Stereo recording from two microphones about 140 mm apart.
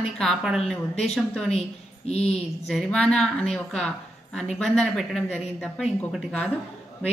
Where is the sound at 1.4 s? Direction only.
50° left (ahead or behind).